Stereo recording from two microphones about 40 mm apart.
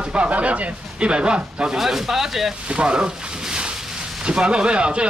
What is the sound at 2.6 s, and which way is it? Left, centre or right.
Speech, right.